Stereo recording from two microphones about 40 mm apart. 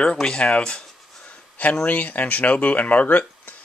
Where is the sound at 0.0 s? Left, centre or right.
Left.